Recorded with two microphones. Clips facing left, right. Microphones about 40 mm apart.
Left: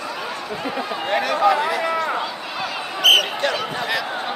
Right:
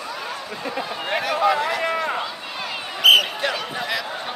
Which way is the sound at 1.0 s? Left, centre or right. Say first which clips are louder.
Left 2 dB; centre.